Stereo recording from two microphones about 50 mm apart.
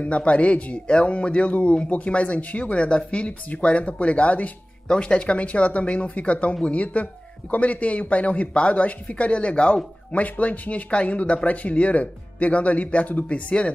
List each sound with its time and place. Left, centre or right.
0.0 s speech: left